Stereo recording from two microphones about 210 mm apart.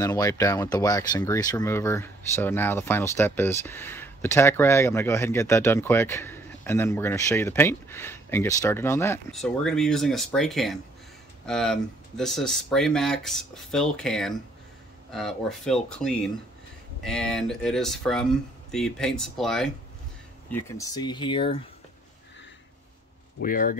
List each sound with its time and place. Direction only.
0.0 s speech: 15° left (ahead or behind)
20.5 s speech: 15° left (ahead or behind)
23.4 s speech: 40° left (ahead or behind)